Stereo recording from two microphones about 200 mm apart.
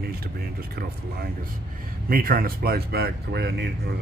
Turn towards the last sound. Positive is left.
turn(degrees=-55)  # may be behind; listen again after turning